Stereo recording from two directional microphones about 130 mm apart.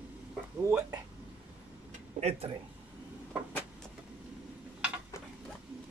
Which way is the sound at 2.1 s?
55° right (ahead or behind).